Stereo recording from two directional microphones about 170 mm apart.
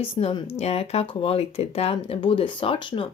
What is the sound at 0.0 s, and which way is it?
Speech, 35° left (ahead or behind).